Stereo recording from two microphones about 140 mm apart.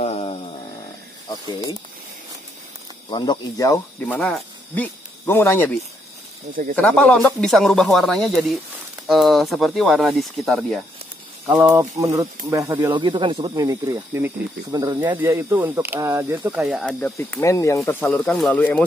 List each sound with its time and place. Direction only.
0.0 s a sound: 45° left (ahead or behind)
3.1 s speech: 30° left (ahead or behind)
4.0 s speech: 10° left (ahead or behind); by 11.7 s 5° right (ahead or behind)
11.7 s speech: 20° right (ahead or behind)
12.9 s speech: 35° right (ahead or behind)
13.7 s speech: 25° right (ahead or behind)
15.0 s speech: 15° right (ahead or behind)
16.4 s speech: 5° right (ahead or behind)
17.2 s speech: 20° left (ahead or behind)
18.0 s speech: 5° left (ahead or behind)